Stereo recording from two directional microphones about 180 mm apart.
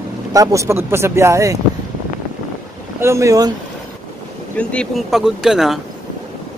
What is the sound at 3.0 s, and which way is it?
Speech, 15° right (ahead or behind).